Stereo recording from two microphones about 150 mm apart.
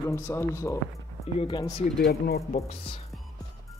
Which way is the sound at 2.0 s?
90° left.